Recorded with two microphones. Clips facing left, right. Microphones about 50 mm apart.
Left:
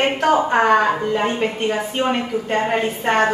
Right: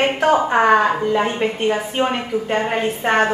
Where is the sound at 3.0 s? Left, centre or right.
Right.